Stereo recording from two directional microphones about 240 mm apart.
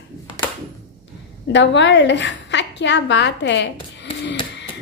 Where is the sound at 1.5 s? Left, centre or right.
Left.